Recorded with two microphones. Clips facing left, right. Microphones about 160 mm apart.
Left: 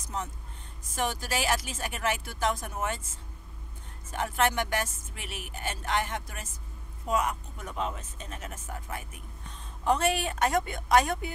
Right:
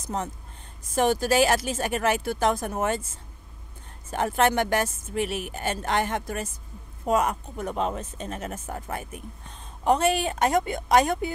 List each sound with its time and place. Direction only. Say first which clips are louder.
0.9 s a woman's voice: right 9 dB; 30° right (ahead or behind)
1.3 s speech: right 9 dB; 55° right (ahead or behind)
2.6 s speech: right 7 dB; 45° right (ahead or behind)
4.1 s speech: right 5 dB; 50° right (ahead or behind)
9.8 s a woman's voice: right 4 dB; 20° right (ahead or behind)